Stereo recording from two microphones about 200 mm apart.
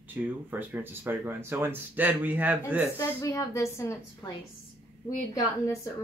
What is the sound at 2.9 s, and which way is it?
A woman's voice, 15° left (ahead or behind).